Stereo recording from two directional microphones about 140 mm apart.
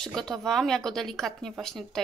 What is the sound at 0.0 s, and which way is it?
Speech, 5° left (ahead or behind).